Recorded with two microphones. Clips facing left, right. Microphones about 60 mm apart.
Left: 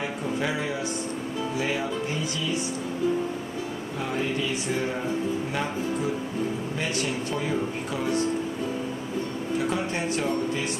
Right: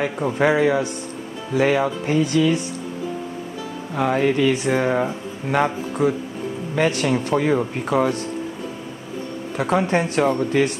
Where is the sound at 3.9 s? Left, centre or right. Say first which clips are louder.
Right 10 dB; right.